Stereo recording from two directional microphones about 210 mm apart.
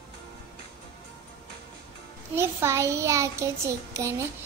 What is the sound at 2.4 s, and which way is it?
Child singing, 10° right (ahead or behind).